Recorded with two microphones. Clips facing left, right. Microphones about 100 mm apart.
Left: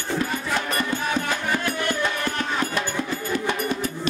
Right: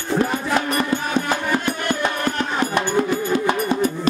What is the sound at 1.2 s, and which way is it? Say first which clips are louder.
Music: right 4 dB; 45° right (ahead or behind).